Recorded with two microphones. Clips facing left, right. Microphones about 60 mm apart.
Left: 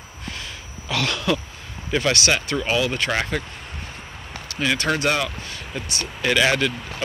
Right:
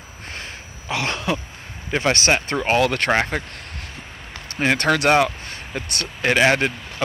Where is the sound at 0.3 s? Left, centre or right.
Right.